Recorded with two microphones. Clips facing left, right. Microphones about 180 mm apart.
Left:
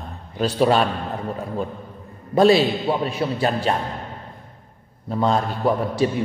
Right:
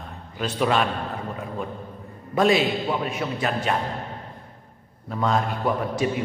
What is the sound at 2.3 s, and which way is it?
A man's voice, 30° left (ahead or behind).